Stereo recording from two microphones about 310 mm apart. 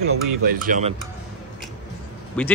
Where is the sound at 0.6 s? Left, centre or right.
Right.